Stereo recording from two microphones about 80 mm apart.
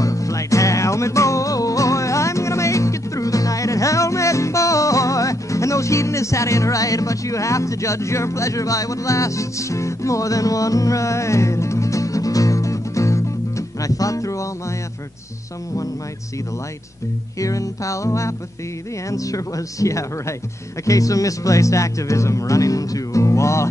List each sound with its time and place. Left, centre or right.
0.0 s music: left
17.4 s speech: left